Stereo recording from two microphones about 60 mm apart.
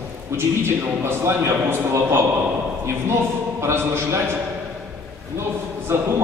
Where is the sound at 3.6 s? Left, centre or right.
Right.